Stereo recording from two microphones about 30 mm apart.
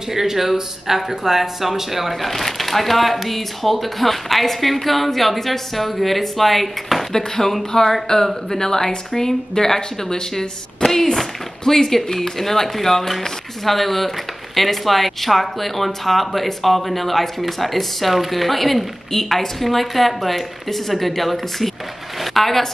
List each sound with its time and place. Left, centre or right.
0.1 s speech: centre
2.2 s speech: centre